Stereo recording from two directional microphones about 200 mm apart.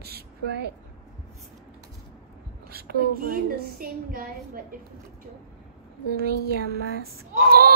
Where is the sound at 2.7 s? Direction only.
50° right (ahead or behind).